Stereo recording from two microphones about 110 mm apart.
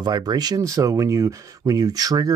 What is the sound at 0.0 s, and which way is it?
Speech, 40° right (ahead or behind).